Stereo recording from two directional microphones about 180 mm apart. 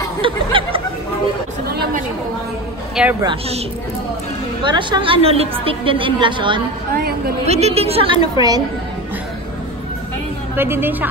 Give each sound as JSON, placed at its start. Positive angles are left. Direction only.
{"t": 0.2, "sound": "a woman's voice", "side_deg": -30}
{"t": 3.0, "sound": "a woman's voice", "side_deg": -5}
{"t": 4.6, "sound": "a woman's voice", "side_deg": -25}
{"t": 7.0, "sound": "a woman's voice", "side_deg": -60}
{"t": 7.4, "sound": "a woman's voice", "side_deg": -35}
{"t": 10.5, "sound": "a woman's voice", "side_deg": -10}